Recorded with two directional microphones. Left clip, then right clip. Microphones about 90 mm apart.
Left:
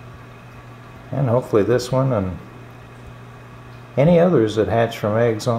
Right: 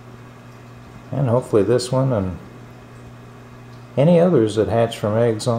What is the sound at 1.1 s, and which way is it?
Speech, 15° right (ahead or behind).